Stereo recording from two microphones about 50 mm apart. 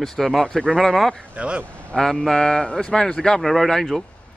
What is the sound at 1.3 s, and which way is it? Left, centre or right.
Speech, right.